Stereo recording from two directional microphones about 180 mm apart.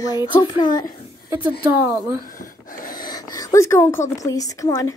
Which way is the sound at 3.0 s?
20° left (ahead or behind).